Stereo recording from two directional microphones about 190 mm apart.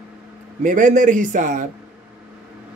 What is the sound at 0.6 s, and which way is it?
A man's voice, 40° right (ahead or behind).